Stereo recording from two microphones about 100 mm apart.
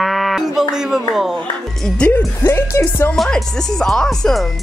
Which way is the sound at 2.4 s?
30° left (ahead or behind).